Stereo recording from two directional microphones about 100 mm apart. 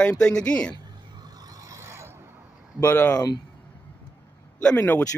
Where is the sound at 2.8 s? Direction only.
20° left (ahead or behind).